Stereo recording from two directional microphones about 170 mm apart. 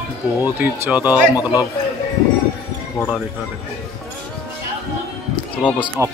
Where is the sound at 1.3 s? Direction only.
25° left (ahead or behind).